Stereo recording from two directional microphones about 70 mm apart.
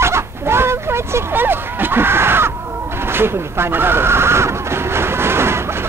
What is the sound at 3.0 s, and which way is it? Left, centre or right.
Neigh, right.